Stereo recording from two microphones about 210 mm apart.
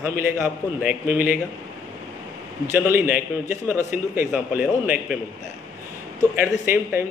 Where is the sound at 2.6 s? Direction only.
10° right (ahead or behind).